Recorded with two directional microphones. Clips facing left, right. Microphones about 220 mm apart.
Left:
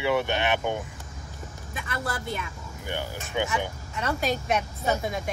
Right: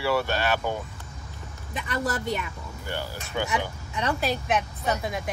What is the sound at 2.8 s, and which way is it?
Speech, 15° left (ahead or behind).